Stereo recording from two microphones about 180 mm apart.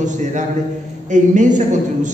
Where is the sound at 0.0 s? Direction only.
45° right (ahead or behind).